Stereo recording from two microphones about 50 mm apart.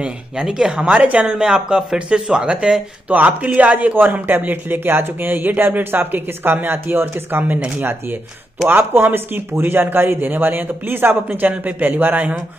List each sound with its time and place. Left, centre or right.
0.0 s speech: centre
0.8 s speech: right
8.6 s speech: right
11.4 s speech: right